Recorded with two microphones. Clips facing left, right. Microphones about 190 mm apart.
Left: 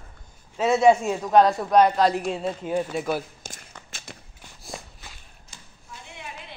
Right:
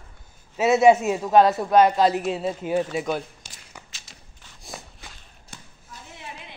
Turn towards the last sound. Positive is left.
turn(degrees=-60)  # may be behind; listen again after turning